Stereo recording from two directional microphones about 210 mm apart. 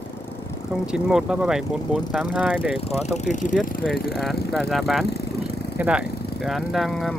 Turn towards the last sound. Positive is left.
turn(degrees=0)  # may be behind; listen again after turning